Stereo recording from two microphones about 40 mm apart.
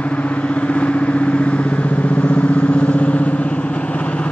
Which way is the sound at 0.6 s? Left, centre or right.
Left.